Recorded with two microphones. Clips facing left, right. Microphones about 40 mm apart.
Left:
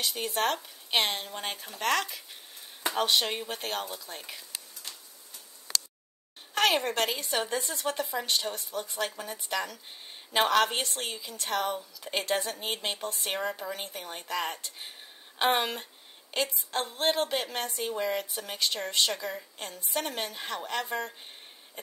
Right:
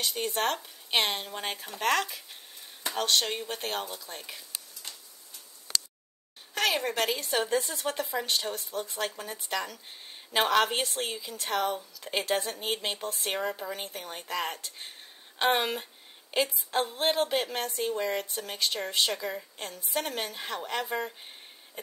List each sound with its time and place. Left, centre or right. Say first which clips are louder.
0.0 s a woman's voice: even; centre
2.9 s a woman's voice: left 1 dB; centre
6.5 s a sound: left 3 dB; left
7.1 s a woman's voice: right 2 dB; centre